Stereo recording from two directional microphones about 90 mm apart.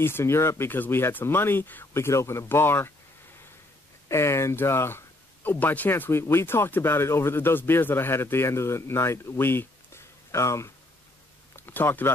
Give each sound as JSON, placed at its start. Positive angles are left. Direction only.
{"t": 0.0, "sound": "speech", "side_deg": 30}
{"t": 4.1, "sound": "speech", "side_deg": 30}
{"t": 11.5, "sound": "a sound", "side_deg": 20}